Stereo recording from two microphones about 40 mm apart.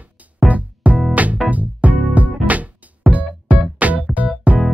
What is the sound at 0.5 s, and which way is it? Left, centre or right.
Music, right.